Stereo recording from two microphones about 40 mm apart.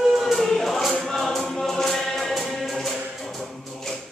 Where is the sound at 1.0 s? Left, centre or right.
Centre.